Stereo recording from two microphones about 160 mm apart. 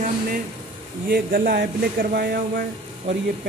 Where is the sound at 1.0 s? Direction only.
65° right (ahead or behind).